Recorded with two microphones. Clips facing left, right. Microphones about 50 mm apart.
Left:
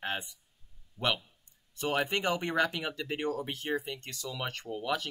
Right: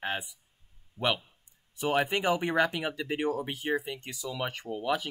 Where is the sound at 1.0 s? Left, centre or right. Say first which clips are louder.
Right 2 dB; right.